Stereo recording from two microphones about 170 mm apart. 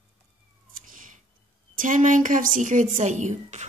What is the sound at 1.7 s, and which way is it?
A woman's voice, 50° right (ahead or behind).